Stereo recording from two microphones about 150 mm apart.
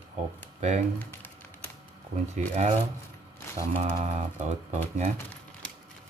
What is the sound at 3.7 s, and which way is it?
Speech, 50° right (ahead or behind).